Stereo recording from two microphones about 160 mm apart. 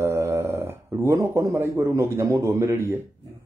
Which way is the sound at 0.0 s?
15° right (ahead or behind).